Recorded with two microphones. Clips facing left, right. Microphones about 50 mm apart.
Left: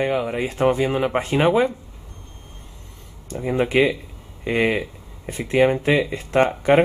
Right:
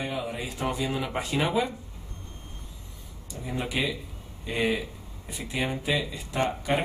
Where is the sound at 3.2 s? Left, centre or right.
Left.